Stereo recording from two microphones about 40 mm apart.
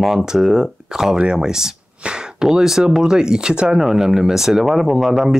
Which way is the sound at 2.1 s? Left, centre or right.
Right.